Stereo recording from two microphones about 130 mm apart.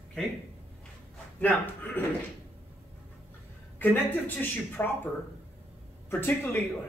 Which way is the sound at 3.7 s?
15° left (ahead or behind).